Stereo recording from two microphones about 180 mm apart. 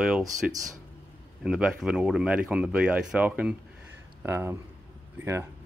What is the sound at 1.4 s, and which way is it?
Speech, 5° right (ahead or behind).